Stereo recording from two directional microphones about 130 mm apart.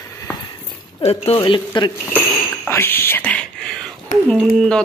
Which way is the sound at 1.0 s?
50° left (ahead or behind).